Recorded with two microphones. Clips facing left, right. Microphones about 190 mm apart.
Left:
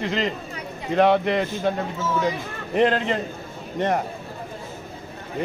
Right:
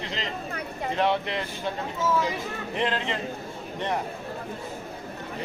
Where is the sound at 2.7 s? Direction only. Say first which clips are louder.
Left 9 dB; 50° left (ahead or behind).